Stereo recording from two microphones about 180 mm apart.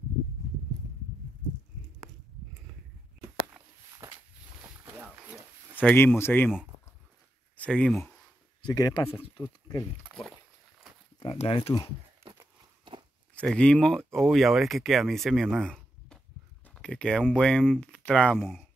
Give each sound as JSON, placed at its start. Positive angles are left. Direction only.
{"t": 3.6, "sound": "walk", "side_deg": 0}
{"t": 4.0, "sound": "walk", "side_deg": -15}
{"t": 4.8, "sound": "wild animals", "side_deg": -10}
{"t": 5.8, "sound": "speech", "side_deg": 10}
{"t": 7.5, "sound": "speech", "side_deg": 5}
{"t": 8.6, "sound": "speech", "side_deg": 25}
{"t": 9.4, "sound": "speech", "side_deg": 15}
{"t": 11.3, "sound": "speech", "side_deg": 35}
{"t": 12.9, "sound": "a sound", "side_deg": -25}
{"t": 13.3, "sound": "speech", "side_deg": 5}